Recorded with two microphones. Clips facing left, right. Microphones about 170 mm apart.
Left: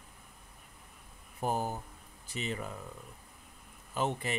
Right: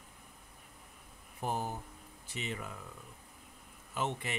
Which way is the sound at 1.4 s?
40° left (ahead or behind).